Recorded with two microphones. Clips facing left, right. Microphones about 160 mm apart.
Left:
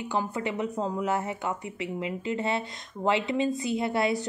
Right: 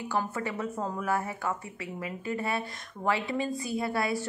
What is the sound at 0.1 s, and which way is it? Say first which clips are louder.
Speech: left 2 dB; 15° left (ahead or behind).